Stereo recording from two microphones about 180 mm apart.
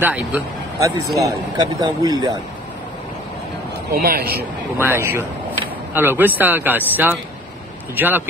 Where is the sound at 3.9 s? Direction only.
55° right (ahead or behind).